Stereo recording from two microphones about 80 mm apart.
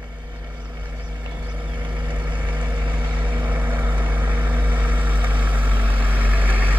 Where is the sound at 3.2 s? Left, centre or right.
Right.